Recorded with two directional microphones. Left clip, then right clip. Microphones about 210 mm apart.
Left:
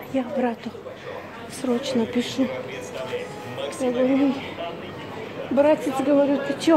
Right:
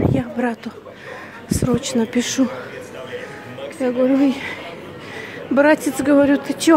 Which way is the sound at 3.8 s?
30° right (ahead or behind).